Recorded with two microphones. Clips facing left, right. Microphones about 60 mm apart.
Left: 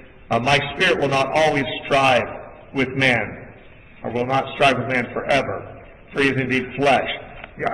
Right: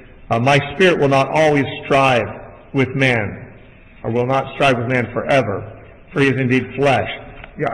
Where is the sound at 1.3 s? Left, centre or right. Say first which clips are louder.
Right 2 dB; centre.